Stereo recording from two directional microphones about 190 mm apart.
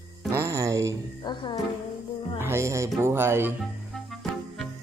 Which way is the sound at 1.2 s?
25° left (ahead or behind).